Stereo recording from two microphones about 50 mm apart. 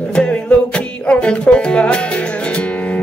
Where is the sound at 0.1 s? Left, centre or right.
Left.